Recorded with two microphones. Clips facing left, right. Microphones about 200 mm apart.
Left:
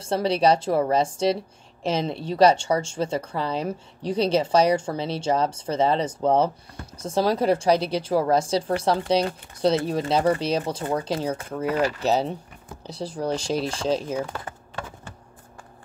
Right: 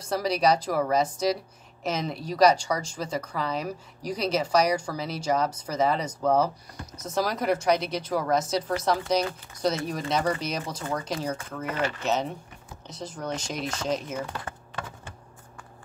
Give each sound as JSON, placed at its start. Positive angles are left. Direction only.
{"t": 0.0, "sound": "a woman's voice", "side_deg": 30}